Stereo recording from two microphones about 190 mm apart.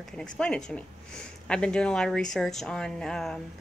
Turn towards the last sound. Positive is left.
turn(degrees=5)  # may be behind; listen again after turning